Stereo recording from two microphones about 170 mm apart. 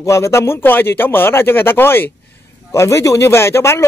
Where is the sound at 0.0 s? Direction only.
15° left (ahead or behind).